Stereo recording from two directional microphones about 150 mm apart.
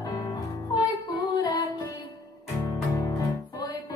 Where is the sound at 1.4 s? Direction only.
25° left (ahead or behind).